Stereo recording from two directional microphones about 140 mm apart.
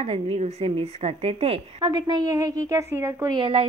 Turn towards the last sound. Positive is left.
turn(degrees=-40)  # may be behind; listen again after turning